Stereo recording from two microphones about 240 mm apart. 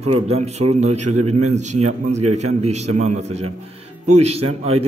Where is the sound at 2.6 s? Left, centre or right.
Right.